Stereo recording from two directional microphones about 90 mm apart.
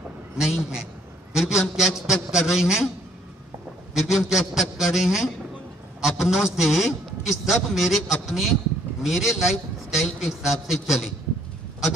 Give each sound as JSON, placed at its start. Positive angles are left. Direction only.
{"t": 0.4, "sound": "a man's voice", "side_deg": -5}
{"t": 3.9, "sound": "a man's voice", "side_deg": -5}